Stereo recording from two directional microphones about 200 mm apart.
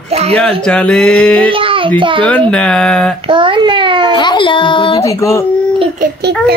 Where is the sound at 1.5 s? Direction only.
25° right (ahead or behind).